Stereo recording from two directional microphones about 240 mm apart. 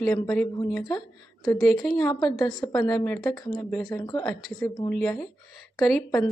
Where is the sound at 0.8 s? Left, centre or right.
Centre.